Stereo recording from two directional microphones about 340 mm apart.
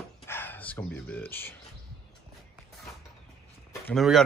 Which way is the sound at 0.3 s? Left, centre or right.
Centre.